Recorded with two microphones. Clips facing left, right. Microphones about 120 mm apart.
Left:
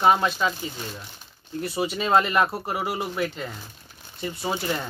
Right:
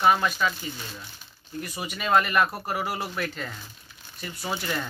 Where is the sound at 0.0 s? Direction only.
25° left (ahead or behind).